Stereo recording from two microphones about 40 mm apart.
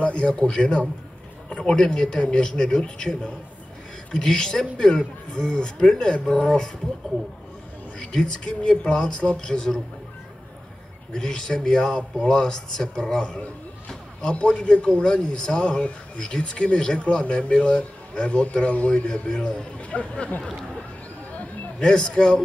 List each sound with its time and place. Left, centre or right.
0.0 s speech: left
8.1 s speech: left
11.1 s speech: centre
13.8 s a sound: left
14.6 s speech: left
21.3 s a sound: left
21.8 s speech: left